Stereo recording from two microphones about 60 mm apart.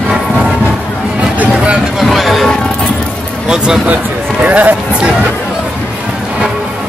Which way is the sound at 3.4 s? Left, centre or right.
Centre.